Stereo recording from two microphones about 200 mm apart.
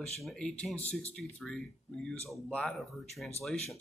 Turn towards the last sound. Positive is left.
turn(degrees=0)  # may be behind; listen again after turning